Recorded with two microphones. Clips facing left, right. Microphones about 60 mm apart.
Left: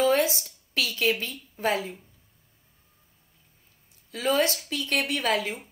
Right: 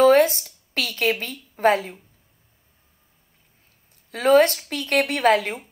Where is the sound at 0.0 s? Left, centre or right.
Right.